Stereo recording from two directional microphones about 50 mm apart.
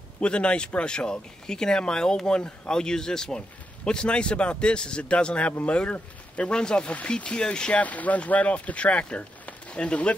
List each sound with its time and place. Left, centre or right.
0.2 s speech: left
7.8 s speech: left